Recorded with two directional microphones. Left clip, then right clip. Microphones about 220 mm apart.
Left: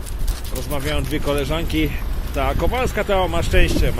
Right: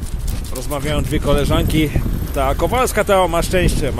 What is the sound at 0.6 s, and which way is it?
Speech, 15° right (ahead or behind).